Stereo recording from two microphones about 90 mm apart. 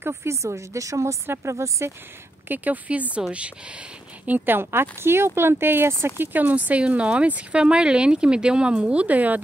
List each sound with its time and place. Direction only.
0.0 s speech: 30° right (ahead or behind)
2.4 s speech: 20° right (ahead or behind)
4.3 s speech: 25° right (ahead or behind)